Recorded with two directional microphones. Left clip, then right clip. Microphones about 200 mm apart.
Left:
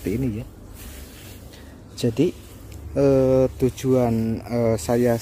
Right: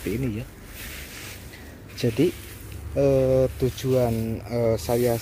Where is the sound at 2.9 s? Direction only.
20° left (ahead or behind).